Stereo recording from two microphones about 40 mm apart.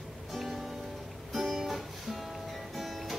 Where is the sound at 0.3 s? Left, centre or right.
Centre.